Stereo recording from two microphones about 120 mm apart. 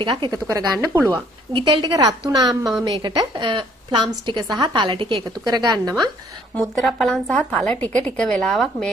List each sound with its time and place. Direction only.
0.0 s a woman's voice: 45° right (ahead or behind)
0.5 s speech: 25° right (ahead or behind)
1.1 s a woman's voice: 40° right (ahead or behind)
6.5 s a woman's voice: 5° left (ahead or behind)